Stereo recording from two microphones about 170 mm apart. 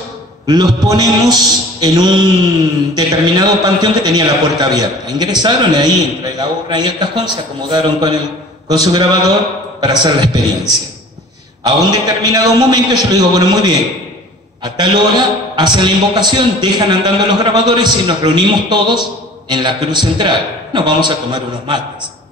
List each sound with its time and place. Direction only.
0.8 s a man's voice: 20° right (ahead or behind)